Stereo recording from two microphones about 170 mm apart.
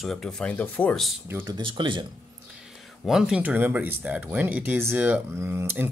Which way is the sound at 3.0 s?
5° right (ahead or behind).